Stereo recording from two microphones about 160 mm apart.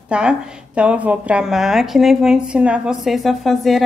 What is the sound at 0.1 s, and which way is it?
A woman's voice, 5° right (ahead or behind).